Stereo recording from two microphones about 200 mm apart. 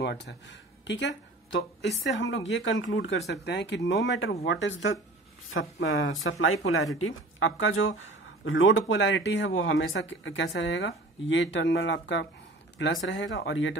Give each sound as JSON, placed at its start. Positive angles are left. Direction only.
{"t": 0.0, "sound": "speech", "side_deg": 60}
{"t": 5.5, "sound": "speech", "side_deg": 85}